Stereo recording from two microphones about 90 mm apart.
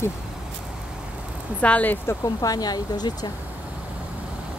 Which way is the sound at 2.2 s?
45° left (ahead or behind).